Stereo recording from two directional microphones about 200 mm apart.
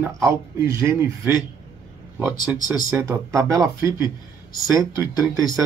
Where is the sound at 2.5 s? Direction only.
5° right (ahead or behind).